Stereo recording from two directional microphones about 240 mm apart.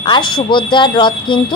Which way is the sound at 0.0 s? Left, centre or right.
Centre.